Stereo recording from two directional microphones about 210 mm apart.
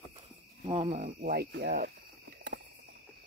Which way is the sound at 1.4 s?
50° right (ahead or behind).